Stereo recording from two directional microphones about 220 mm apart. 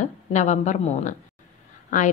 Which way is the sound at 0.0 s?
30° left (ahead or behind).